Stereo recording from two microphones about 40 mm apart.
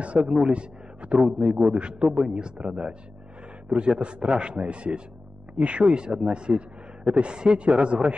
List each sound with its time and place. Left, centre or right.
0.0 s a man's voice: right